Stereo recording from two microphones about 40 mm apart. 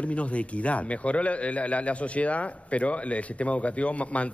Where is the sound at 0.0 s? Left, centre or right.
Left.